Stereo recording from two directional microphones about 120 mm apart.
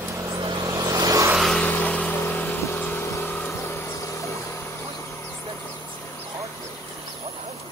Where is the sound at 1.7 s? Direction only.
10° left (ahead or behind).